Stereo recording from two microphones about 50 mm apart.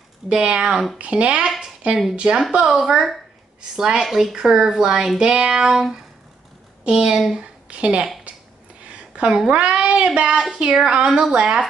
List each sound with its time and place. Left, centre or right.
0.3 s a woman's voice: centre
0.9 s child singing: right
1.6 s a sound: centre
2.1 s child singing: centre
2.5 s a woman's voice: centre
8.8 s a sound: right
9.5 s child singing: right
10.5 s child singing: centre
11.3 s a woman's voice: centre